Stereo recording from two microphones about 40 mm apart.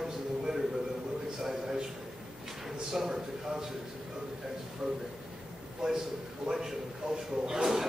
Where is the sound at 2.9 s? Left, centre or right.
Centre.